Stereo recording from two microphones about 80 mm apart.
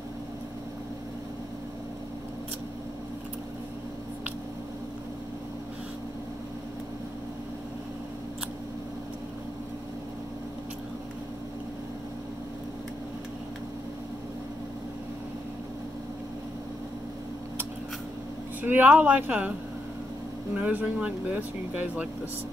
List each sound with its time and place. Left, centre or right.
18.6 s speech: right
20.5 s speech: centre